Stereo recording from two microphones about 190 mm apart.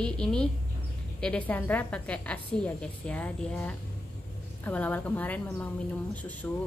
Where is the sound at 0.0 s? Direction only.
5° left (ahead or behind).